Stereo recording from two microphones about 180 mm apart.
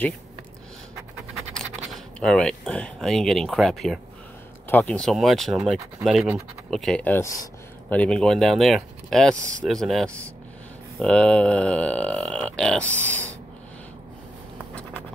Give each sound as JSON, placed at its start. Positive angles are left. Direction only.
{"t": 1.9, "sound": "speech", "side_deg": 5}